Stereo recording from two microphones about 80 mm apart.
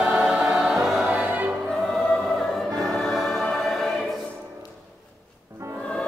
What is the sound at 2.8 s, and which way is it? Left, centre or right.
Music, centre.